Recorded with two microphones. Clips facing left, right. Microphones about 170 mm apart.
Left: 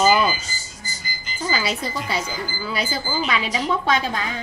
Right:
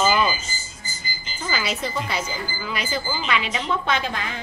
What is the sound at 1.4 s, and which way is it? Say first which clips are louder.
Speech: left 2 dB; 35° left (ahead or behind).